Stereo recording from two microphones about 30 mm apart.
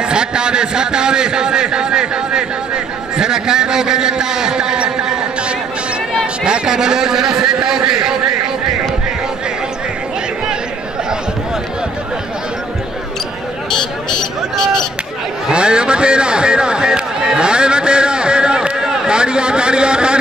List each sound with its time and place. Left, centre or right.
0.0 s a man's voice: right
6.4 s a man's voice: right
15.5 s a man's voice: right